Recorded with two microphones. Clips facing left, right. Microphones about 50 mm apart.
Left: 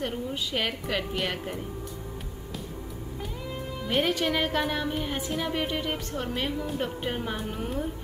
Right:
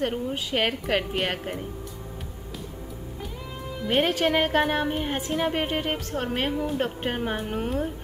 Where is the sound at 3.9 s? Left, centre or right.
Right.